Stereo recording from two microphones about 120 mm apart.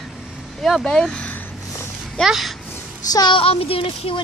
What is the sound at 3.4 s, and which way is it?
Speech, 55° left (ahead or behind).